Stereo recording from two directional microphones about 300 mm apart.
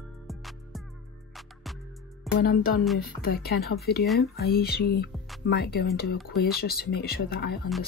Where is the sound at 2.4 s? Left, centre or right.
Left.